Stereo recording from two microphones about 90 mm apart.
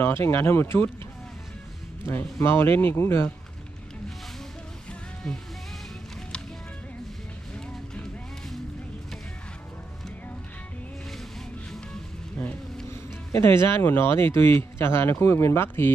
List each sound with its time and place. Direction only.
0.0 s speech: 25° left (ahead or behind)
2.3 s speech: 25° left (ahead or behind)
7.5 s music: 10° left (ahead or behind)
11.7 s music: 5° left (ahead or behind)
13.3 s speech: 30° left (ahead or behind)